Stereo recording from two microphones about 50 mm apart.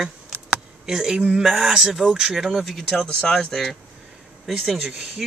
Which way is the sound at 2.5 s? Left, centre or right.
Centre.